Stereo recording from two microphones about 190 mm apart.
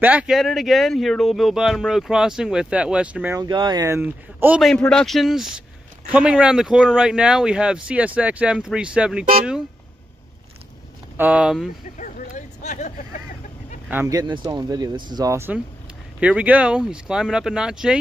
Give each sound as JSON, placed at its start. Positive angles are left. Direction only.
{"t": 0.0, "sound": "speech", "side_deg": -5}
{"t": 3.3, "sound": "speech", "side_deg": -25}
{"t": 11.1, "sound": "speech", "side_deg": -5}
{"t": 12.0, "sound": "a sound", "side_deg": 40}
{"t": 13.8, "sound": "speech", "side_deg": -15}